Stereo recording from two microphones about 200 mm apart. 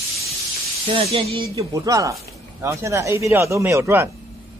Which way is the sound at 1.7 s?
15° right (ahead or behind).